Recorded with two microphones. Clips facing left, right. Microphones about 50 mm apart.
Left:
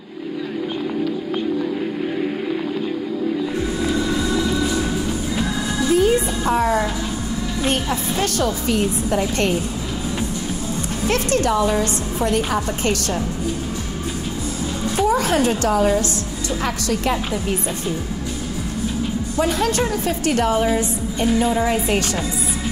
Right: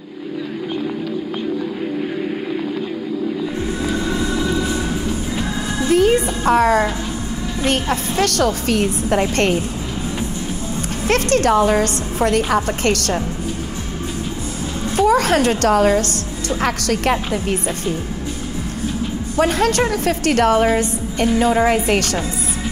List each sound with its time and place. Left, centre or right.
4.0 s train: right
4.6 s music: right
5.9 s music: right
6.4 s a woman's voice: right
7.9 s a woman's voice: right
8.8 s a woman's voice: right
10.3 s music: right
11.1 s a woman's voice: right
15.0 s a woman's voice: right
19.3 s a woman's voice: right